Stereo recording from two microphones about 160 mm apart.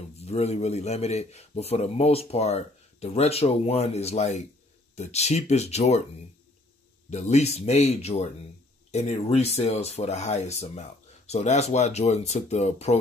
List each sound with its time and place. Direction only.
0.2 s a man's voice: 40° left (ahead or behind)
7.1 s speech: 45° left (ahead or behind)